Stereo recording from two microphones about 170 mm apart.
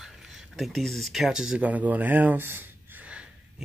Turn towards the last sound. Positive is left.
turn(degrees=-5)  # may be behind; listen again after turning